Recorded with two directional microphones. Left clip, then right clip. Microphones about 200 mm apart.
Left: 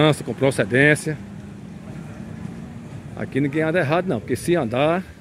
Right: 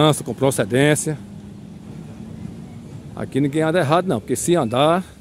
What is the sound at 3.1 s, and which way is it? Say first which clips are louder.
Speech: right 2 dB; 15° right (ahead or behind).